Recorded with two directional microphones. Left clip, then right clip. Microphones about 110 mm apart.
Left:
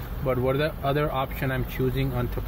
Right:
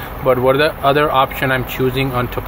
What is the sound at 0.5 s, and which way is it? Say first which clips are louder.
Speech: right 13 dB; centre (ahead or behind).